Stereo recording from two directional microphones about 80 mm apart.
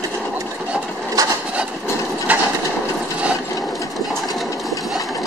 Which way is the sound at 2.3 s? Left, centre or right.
Centre.